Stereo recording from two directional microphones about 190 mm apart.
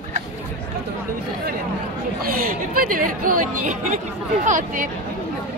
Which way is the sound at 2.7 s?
50° right (ahead or behind).